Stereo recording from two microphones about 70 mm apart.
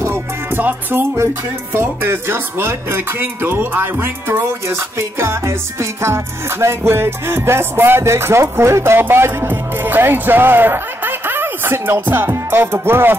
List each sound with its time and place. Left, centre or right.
0.0 s music: right